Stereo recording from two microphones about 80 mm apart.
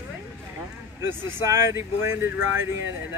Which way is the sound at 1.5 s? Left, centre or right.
Right.